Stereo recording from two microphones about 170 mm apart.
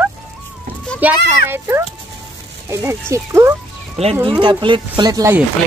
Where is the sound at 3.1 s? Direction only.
15° right (ahead or behind).